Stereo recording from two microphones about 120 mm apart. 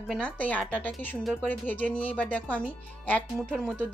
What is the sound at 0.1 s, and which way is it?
Speech, 10° left (ahead or behind).